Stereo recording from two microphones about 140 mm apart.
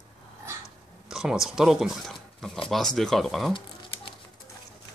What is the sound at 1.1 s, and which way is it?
Speech, 5° right (ahead or behind).